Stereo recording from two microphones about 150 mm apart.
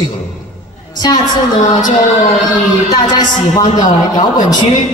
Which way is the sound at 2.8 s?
25° left (ahead or behind).